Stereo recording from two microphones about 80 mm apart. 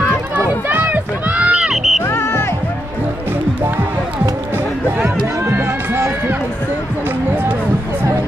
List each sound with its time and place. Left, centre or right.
0.7 s run: right
1.5 s a sound: centre
2.0 s music: left
5.0 s run: right